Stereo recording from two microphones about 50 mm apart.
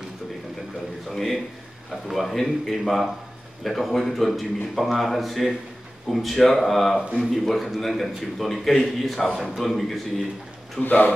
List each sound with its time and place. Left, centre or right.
1.1 s a man's voice: centre
10.8 s speech: left